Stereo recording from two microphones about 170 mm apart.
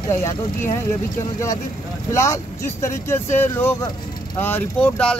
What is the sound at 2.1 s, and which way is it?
Speech, 15° left (ahead or behind).